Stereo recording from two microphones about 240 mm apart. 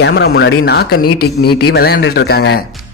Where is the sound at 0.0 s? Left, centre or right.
Left.